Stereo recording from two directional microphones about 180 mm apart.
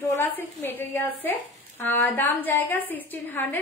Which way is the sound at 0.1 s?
15° left (ahead or behind).